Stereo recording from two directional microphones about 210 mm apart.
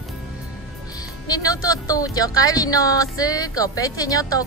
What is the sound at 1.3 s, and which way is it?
Speech, 15° left (ahead or behind).